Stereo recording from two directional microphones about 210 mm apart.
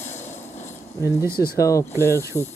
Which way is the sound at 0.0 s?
10° left (ahead or behind).